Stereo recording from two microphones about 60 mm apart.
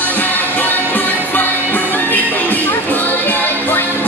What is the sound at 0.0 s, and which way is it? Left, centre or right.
Music, left.